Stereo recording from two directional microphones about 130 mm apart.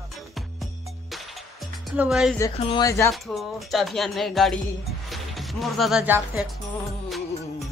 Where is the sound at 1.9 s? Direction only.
5° right (ahead or behind).